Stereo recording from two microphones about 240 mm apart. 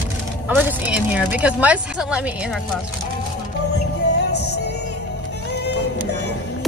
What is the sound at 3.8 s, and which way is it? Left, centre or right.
Music, left.